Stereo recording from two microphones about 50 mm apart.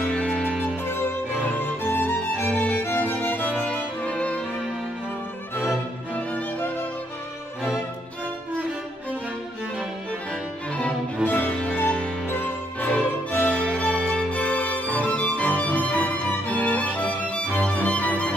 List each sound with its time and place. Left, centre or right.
0.0 s music: left
0.3 s music: centre
0.8 s music: left
4.0 s music: left
11.2 s music: left
12.3 s music: left
12.9 s music: left